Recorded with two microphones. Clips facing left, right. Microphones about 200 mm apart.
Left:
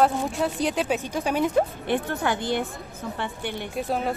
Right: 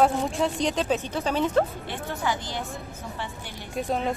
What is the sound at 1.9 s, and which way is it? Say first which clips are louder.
Speech: left 5 dB; 60° left (ahead or behind).